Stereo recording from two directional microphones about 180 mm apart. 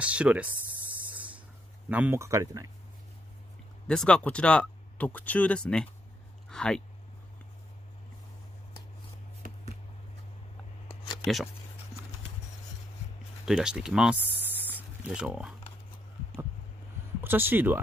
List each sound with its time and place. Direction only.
0.0 s a sound: 5° right (ahead or behind)
1.9 s speech: 10° right (ahead or behind)
3.8 s speech: 5° left (ahead or behind)
13.5 s speech: 5° right (ahead or behind)
17.2 s speech: 10° right (ahead or behind)